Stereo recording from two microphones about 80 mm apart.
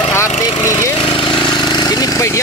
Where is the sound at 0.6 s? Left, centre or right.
Left.